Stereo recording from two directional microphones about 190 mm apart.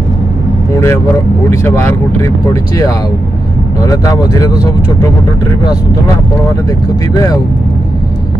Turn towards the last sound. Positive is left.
turn(degrees=20)  # may be behind; listen again after turning